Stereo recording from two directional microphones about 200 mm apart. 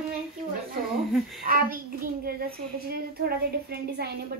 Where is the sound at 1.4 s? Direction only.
45° right (ahead or behind).